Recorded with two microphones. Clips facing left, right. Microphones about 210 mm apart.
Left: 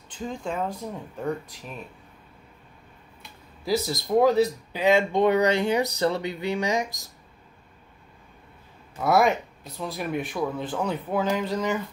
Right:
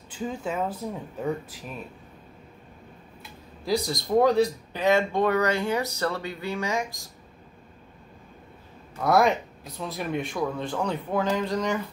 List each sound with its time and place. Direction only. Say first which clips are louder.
0.1 s speech: right 1 dB; 5° right (ahead or behind)
3.2 s speech: right 2 dB; centre (ahead or behind); by 6.9 s 20° left (ahead or behind)
8.9 s speech: even; centre (ahead or behind)